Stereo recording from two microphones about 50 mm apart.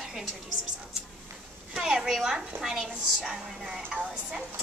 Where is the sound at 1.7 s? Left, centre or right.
Centre.